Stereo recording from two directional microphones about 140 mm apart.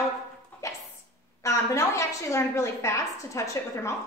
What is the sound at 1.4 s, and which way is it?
A woman's voice, 20° left (ahead or behind).